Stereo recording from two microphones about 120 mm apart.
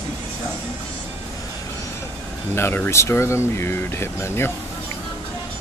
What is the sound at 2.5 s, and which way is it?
Speech, 20° left (ahead or behind).